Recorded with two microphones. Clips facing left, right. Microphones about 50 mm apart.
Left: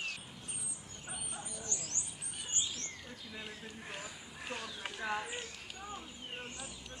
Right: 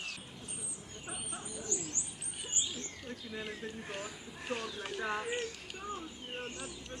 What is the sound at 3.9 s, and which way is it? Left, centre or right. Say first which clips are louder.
Speech: right 3 dB; centre.